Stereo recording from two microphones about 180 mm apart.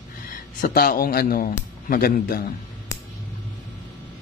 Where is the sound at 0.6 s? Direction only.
55° left (ahead or behind).